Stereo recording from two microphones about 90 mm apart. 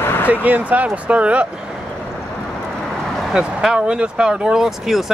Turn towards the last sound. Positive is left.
turn(degrees=-5)  # may be behind; listen again after turning